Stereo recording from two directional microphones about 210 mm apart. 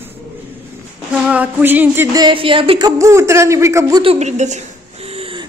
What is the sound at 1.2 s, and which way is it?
Music, 5° right (ahead or behind).